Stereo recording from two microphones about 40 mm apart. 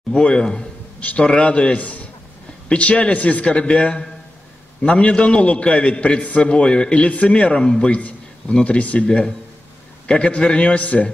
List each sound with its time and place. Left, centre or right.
0.1 s a man's voice: left
1.8 s a man's voice: left
2.7 s a man's voice: left
3.4 s a man's voice: left
7.6 s a man's voice: centre
7.9 s a man's voice: left
9.0 s a man's voice: left
10.8 s a man's voice: left